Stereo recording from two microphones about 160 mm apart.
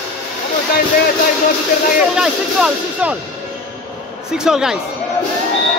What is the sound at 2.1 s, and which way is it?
Speech, 5° right (ahead or behind).